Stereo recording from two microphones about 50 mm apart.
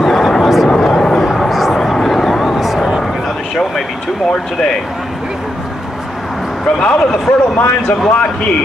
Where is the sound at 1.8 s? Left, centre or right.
Centre.